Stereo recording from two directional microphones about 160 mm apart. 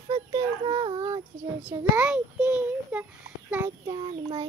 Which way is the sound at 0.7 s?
30° right (ahead or behind).